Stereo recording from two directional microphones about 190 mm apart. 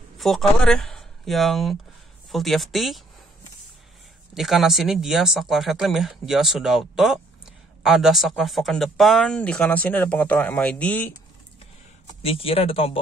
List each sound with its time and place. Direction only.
0.2 s speech: centre (ahead or behind)
4.3 s speech: centre (ahead or behind)
12.2 s speech: 30° left (ahead or behind)